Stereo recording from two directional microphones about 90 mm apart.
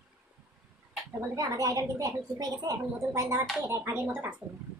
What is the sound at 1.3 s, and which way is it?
A woman's voice, 35° right (ahead or behind).